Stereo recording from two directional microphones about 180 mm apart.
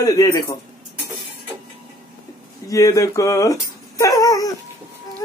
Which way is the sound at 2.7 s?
15° left (ahead or behind).